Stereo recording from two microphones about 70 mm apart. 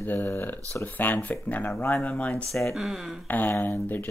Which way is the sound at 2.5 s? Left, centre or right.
Centre.